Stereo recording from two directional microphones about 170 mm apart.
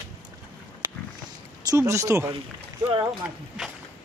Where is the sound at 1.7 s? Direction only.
15° right (ahead or behind).